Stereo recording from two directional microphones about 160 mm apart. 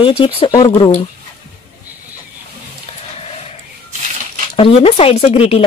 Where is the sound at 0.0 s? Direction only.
35° left (ahead or behind).